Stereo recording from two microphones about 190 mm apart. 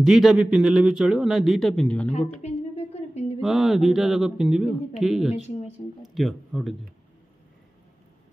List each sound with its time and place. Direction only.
0.0 s a man's voice: centre (ahead or behind)
2.0 s a sound: 35° left (ahead or behind)
3.3 s a man's voice: centre (ahead or behind)